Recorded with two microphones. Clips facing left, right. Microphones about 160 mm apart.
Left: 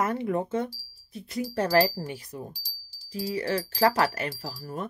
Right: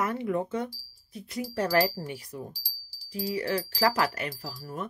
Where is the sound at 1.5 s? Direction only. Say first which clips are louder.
Left 2 dB; 40° left (ahead or behind).